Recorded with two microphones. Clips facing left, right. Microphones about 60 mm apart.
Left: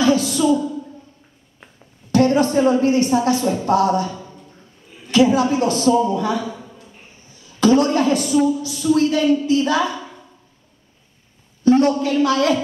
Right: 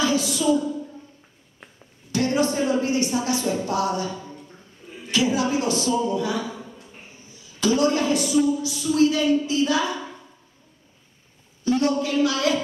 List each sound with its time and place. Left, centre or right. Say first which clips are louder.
0.0 s a sound: left 5 dB; left
2.1 s a woman's voice: left 7 dB; left
5.1 s a woman's voice: left 7 dB; left
7.6 s a woman's voice: left 5 dB; left
11.6 s a woman's voice: left 7 dB; left